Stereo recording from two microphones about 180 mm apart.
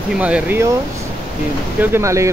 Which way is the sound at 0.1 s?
5° right (ahead or behind).